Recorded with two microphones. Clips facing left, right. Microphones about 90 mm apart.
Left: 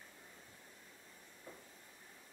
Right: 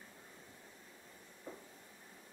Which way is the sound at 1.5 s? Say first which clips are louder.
Right 5 dB; 25° right (ahead or behind).